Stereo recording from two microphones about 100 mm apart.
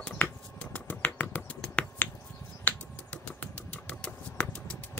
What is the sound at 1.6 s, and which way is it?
Finger snapping, 10° left (ahead or behind).